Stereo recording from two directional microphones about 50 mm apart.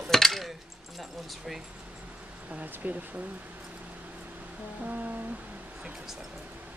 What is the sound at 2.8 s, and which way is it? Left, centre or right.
Speech, right.